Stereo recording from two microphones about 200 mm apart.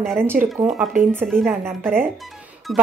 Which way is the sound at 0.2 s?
10° right (ahead or behind).